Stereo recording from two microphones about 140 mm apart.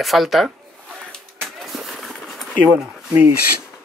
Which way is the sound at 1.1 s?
Centre (ahead or behind).